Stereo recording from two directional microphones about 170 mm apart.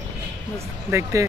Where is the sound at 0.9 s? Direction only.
15° right (ahead or behind).